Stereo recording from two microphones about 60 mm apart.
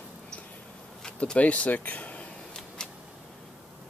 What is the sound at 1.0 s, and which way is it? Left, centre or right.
Speech, centre.